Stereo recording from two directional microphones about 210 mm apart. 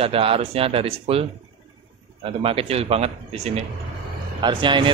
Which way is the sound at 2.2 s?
25° right (ahead or behind).